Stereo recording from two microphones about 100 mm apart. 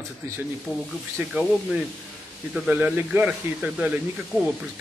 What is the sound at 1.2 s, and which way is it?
Speech, 20° right (ahead or behind).